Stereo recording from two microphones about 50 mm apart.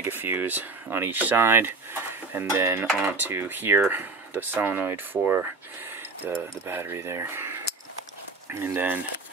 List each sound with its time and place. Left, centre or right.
0.0 s speech: right
1.3 s speech: right
7.0 s speech: right